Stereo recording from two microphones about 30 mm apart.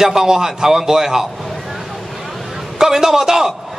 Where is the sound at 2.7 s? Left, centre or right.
Centre.